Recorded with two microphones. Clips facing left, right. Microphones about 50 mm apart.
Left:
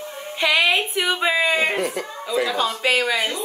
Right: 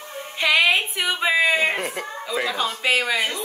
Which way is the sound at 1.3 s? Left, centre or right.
Centre.